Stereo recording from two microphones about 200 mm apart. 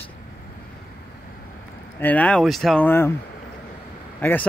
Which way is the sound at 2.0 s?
10° left (ahead or behind).